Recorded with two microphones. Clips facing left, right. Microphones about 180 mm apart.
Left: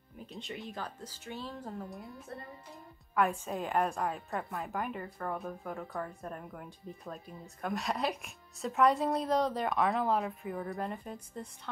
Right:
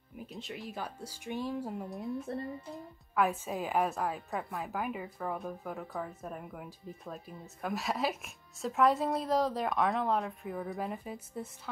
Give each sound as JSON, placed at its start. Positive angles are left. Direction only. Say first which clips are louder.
{"t": 0.3, "sound": "speech", "louder": "left 1 dB", "side_deg": 0}
{"t": 2.3, "sound": "speech", "louder": "right 4 dB", "side_deg": -30}
{"t": 3.2, "sound": "a woman's voice", "louder": "even", "side_deg": 0}